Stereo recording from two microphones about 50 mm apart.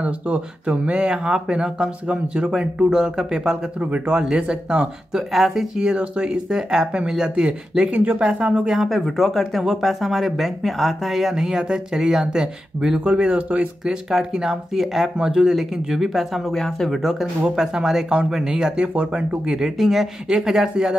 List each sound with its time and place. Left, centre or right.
0.0 s speech: right; by 3.5 s centre
3.8 s speech: right
5.1 s speech: centre; by 8.6 s right
8.6 s speech: centre
13.0 s speech: right
13.8 s speech: centre
16.5 s speech: centre